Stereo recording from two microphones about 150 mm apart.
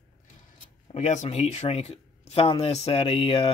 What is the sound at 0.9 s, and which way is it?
Speech, 50° left (ahead or behind).